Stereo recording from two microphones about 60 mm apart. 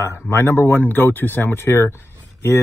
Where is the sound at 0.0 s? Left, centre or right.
Left.